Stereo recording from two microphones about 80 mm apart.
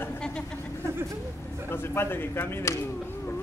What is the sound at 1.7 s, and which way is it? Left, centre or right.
Speech, left.